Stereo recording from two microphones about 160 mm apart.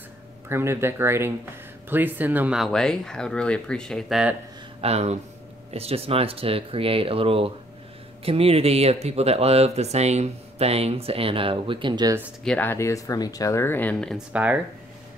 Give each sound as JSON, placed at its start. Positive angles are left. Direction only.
{"t": 0.5, "sound": "speech", "side_deg": -15}
{"t": 4.8, "sound": "speech", "side_deg": -40}
{"t": 12.4, "sound": "speech", "side_deg": 10}
{"t": 14.3, "sound": "speech", "side_deg": -10}